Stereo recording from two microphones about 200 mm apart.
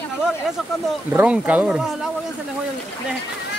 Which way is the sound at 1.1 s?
5° right (ahead or behind).